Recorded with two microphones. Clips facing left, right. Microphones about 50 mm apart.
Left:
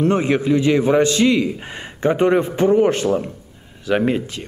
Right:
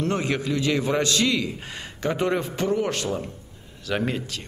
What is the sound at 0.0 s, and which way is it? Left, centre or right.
Speech, left.